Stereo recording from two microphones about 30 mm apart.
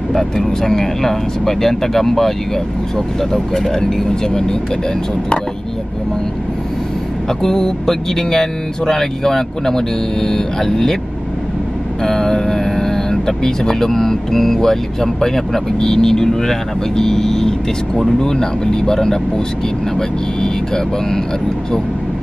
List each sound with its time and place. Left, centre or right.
0.1 s speech: centre
3.3 s speech: centre
7.4 s speech: centre
12.0 s speech: centre